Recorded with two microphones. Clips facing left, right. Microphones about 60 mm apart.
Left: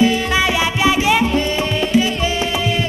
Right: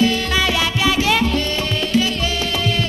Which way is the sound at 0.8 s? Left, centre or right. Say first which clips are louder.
Left 3 dB; centre.